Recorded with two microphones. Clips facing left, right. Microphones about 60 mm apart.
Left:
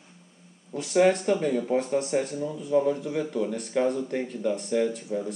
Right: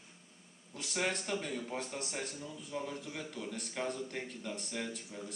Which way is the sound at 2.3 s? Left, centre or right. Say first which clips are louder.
Left 14 dB; left.